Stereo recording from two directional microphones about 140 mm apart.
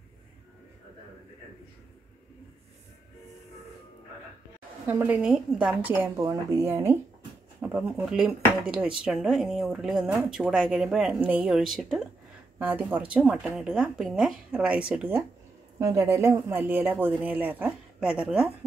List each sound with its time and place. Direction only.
4.8 s a woman's voice: 15° right (ahead or behind)
7.6 s a woman's voice: 5° right (ahead or behind)
15.8 s a woman's voice: 20° right (ahead or behind)